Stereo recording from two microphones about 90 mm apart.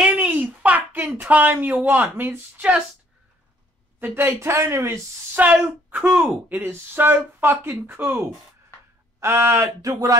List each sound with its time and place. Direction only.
0.0 s a sound: 15° right (ahead or behind)
1.9 s speech: 20° right (ahead or behind)
4.0 s speech: 25° right (ahead or behind)
5.3 s speech: 15° right (ahead or behind); by 10.1 s 40° right (ahead or behind)